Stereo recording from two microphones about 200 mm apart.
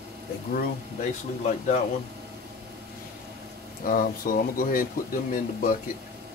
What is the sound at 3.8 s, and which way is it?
Speech, 45° left (ahead or behind).